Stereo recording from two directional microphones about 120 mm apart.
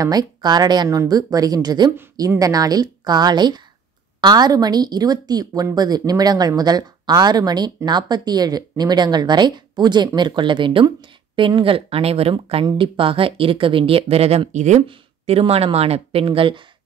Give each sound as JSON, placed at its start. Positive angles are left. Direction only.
{"t": 0.0, "sound": "a woman's voice", "side_deg": -35}
{"t": 14.9, "sound": "speech", "side_deg": -55}